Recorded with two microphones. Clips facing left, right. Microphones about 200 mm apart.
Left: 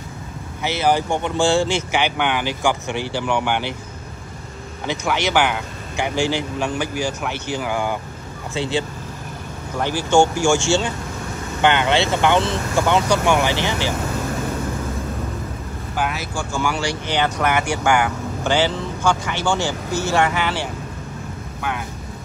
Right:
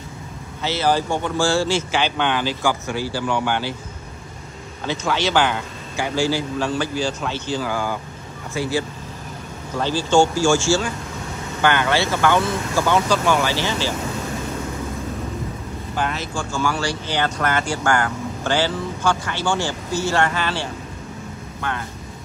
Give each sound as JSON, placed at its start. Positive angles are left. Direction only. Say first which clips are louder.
{"t": 0.7, "sound": "speech", "louder": "left 1 dB", "side_deg": 15}
{"t": 4.8, "sound": "speech", "louder": "even", "side_deg": 15}
{"t": 11.6, "sound": "speech", "louder": "left 2 dB", "side_deg": 20}
{"t": 16.0, "sound": "speech", "louder": "left 1 dB", "side_deg": 10}